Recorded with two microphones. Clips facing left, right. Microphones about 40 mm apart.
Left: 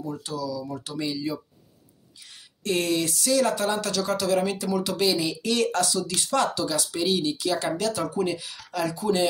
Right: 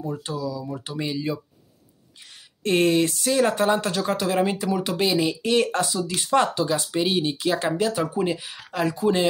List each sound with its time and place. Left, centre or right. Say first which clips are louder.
0.0 s speech: right 2 dB; right
2.6 s speech: right 5 dB; right